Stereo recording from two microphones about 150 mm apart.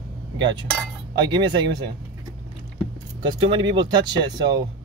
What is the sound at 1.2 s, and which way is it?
Speech, 30° right (ahead or behind).